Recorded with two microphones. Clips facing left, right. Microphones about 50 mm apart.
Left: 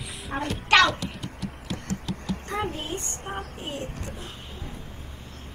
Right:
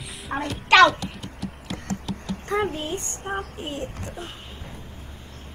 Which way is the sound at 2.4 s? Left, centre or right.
Right.